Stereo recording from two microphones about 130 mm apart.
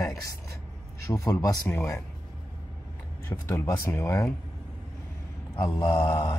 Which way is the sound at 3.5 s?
25° left (ahead or behind).